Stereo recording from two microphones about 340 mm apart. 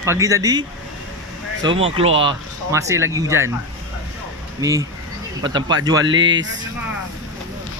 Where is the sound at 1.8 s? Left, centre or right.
Centre.